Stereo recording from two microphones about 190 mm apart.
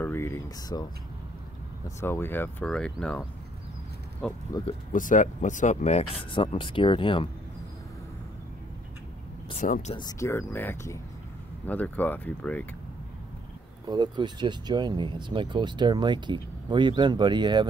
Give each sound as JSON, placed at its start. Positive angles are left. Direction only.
{"t": 0.0, "sound": "speech", "side_deg": 10}
{"t": 2.0, "sound": "speech", "side_deg": 10}
{"t": 4.5, "sound": "speech", "side_deg": 20}
{"t": 4.9, "sound": "speech", "side_deg": 45}
{"t": 9.7, "sound": "speech", "side_deg": 40}
{"t": 9.9, "sound": "speech", "side_deg": 20}
{"t": 13.8, "sound": "speech", "side_deg": -25}